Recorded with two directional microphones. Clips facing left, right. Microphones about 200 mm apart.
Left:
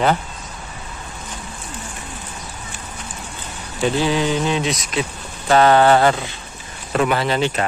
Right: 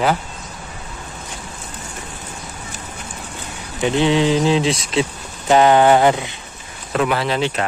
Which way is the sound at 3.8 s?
20° right (ahead or behind).